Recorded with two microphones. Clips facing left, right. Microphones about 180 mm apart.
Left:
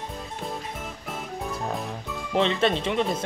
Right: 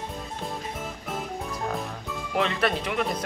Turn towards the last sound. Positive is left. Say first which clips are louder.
# left 3 dB
turn(degrees=25)  # may be behind; listen again after turning